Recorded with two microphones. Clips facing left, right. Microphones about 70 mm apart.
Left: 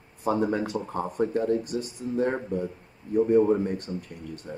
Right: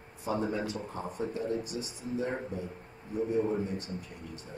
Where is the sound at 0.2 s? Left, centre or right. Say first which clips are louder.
Left 7 dB; left.